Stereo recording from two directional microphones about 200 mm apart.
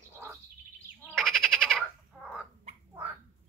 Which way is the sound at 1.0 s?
Centre (ahead or behind).